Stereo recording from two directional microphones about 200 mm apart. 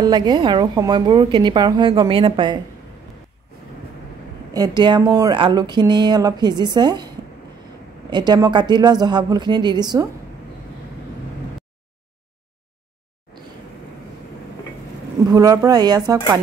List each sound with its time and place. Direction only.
0.0 s a woman's voice: 20° right (ahead or behind)
4.6 s a woman's voice: 20° right (ahead or behind)
8.1 s a woman's voice: 20° right (ahead or behind)
15.3 s a woman's voice: 15° right (ahead or behind)